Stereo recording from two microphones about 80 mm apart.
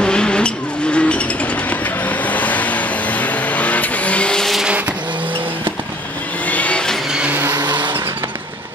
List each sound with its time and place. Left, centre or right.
0.0 s vehicle: centre
6.4 s vehicle: centre
7.1 s vehicle: centre
7.5 s vehicle: right